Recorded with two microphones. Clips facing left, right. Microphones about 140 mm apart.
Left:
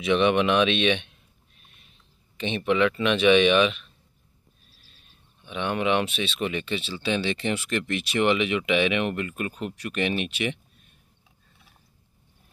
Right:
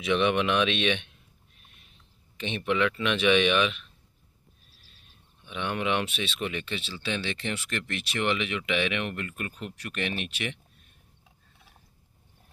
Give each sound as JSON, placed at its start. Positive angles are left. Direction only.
{"t": 0.0, "sound": "speech", "side_deg": -5}
{"t": 2.3, "sound": "speech", "side_deg": -5}
{"t": 5.4, "sound": "a sound", "side_deg": 20}
{"t": 5.7, "sound": "speech", "side_deg": 0}
{"t": 6.4, "sound": "speech", "side_deg": 5}